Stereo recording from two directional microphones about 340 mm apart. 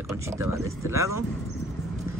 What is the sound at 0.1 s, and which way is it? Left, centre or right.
Speech, centre.